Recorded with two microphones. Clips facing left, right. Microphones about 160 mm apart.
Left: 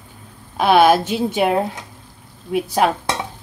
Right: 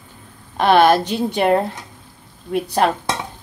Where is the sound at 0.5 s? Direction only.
5° left (ahead or behind).